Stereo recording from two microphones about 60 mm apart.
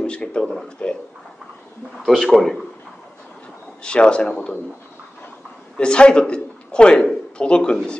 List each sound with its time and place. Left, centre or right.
0.0 s speech: centre
2.0 s speech: centre
3.8 s speech: centre
5.8 s a man's voice: centre